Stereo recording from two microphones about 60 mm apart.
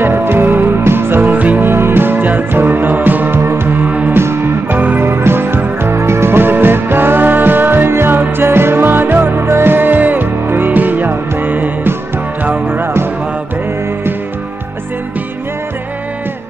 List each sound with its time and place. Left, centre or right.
0.0 s music: right
1.7 s music: right
3.3 s music: right
4.2 s music: right
5.0 s music: right
12.8 s music: right